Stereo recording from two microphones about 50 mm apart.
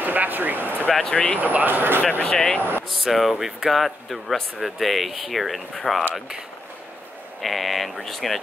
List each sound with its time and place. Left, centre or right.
0.0 s a sound: right
1.1 s speech: left
1.4 s speech: right
2.2 s speech: centre
2.9 s speech: centre
7.4 s speech: centre